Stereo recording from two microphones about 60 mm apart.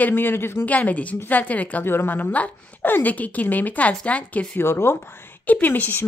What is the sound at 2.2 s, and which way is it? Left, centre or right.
Speech, left.